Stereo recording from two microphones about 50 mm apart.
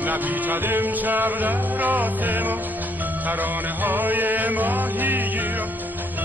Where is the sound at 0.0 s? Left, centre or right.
Right.